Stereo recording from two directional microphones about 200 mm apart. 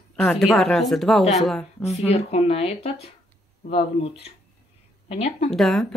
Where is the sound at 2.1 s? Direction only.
30° left (ahead or behind).